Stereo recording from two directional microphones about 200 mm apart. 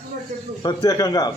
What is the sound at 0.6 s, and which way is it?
Speech, 20° left (ahead or behind).